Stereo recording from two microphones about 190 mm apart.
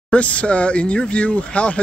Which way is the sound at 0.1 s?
5° left (ahead or behind).